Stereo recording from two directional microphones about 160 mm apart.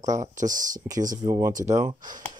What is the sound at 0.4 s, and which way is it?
Speech, 55° right (ahead or behind).